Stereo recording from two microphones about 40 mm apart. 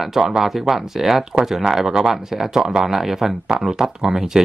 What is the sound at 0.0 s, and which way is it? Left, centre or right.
Speech, centre.